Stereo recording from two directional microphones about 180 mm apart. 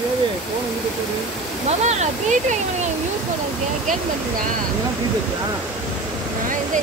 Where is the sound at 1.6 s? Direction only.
40° right (ahead or behind).